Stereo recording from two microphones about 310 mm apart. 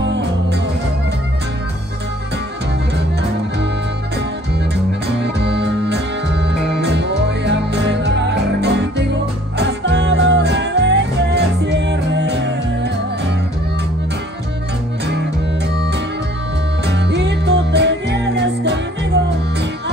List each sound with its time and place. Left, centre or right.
0.0 s music: right
5.0 s music: right
16.8 s music: right